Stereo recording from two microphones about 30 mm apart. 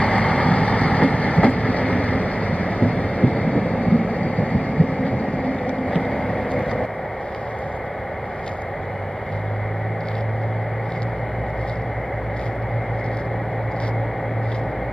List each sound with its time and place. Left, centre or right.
0.0 s train: left
6.0 s vehicle: left